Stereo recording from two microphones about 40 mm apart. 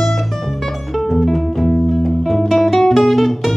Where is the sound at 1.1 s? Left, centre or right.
Centre.